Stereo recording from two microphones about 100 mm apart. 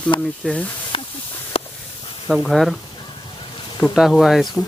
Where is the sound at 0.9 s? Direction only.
65° left (ahead or behind).